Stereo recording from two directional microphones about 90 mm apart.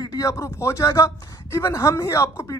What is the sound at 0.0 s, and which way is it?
A man's voice, 45° left (ahead or behind).